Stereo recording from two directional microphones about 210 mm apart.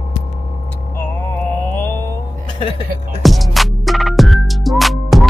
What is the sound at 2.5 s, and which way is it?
Speech, 25° left (ahead or behind).